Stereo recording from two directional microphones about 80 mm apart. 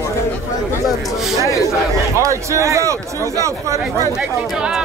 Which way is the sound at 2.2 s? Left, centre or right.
Right.